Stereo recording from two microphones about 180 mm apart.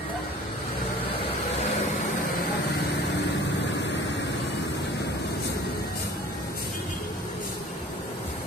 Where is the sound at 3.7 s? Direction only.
80° left.